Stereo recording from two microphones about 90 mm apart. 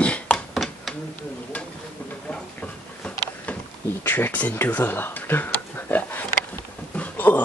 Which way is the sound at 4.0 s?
20° left (ahead or behind).